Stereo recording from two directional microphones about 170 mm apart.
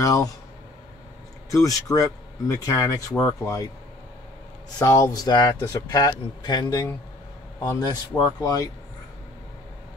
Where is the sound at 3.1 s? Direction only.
10° left (ahead or behind).